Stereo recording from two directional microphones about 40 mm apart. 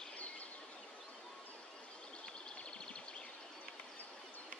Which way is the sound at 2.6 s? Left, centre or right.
Left.